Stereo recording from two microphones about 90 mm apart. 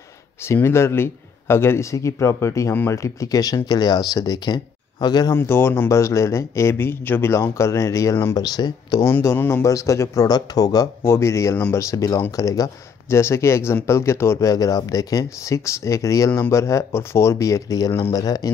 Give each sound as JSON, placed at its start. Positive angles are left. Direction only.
{"t": 0.5, "sound": "speech", "side_deg": 30}
{"t": 2.7, "sound": "speech", "side_deg": 25}
{"t": 3.0, "sound": "speech", "side_deg": 40}
{"t": 5.3, "sound": "speech", "side_deg": 25}
{"t": 8.4, "sound": "speech", "side_deg": 50}
{"t": 9.0, "sound": "speech", "side_deg": 30}
{"t": 11.1, "sound": "speech", "side_deg": 30}
{"t": 14.5, "sound": "speech", "side_deg": 40}